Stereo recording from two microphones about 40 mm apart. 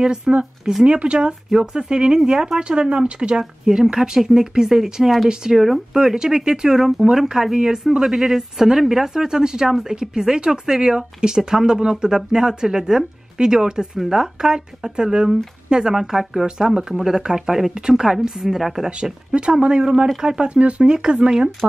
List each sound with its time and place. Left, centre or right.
0.0 s a woman's voice: right
6.8 s speech: centre
7.1 s a woman's voice: centre
19.3 s speech: right